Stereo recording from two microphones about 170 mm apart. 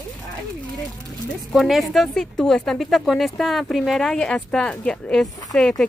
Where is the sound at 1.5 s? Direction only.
Centre (ahead or behind).